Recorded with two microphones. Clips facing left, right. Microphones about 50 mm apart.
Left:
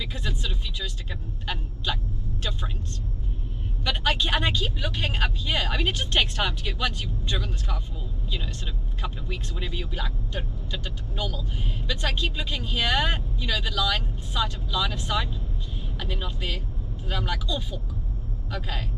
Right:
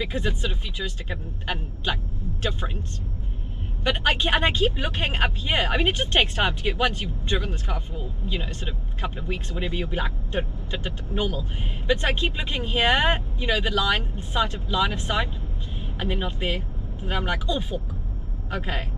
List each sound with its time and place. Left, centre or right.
0.0 s speech: right
3.8 s speech: right